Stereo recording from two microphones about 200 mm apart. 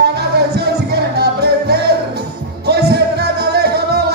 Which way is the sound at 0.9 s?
55° right (ahead or behind).